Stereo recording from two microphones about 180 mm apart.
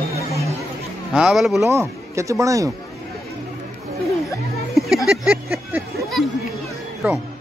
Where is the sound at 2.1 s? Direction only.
15° right (ahead or behind).